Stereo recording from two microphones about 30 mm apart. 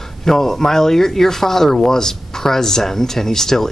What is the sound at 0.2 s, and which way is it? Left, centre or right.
Speech, centre.